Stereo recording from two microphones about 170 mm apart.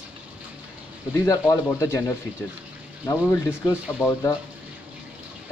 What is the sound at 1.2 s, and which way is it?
Speech, 20° left (ahead or behind).